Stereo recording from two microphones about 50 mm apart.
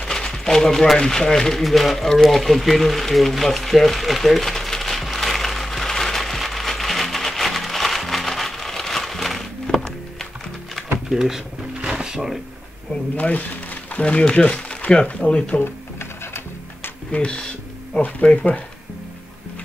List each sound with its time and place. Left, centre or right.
0.0 s a sound: centre
11.1 s drawer open or close: centre
13.1 s speech: left
15.6 s music: left
17.1 s a sound: centre
18.0 s speech: left